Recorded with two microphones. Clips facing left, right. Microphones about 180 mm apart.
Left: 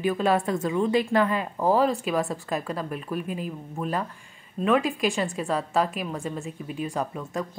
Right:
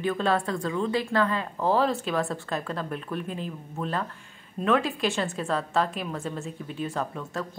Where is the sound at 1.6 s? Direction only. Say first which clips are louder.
Left 2 dB; 5° left (ahead or behind).